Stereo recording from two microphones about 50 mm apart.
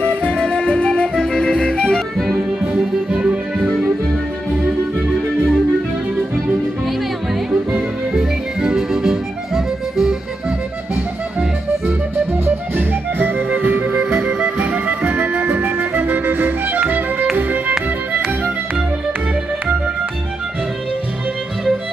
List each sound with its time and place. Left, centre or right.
0.2 s music: centre
3.1 s music: right
8.1 s music: centre
12.4 s music: right